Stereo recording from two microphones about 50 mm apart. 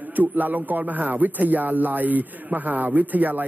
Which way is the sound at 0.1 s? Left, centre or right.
Right.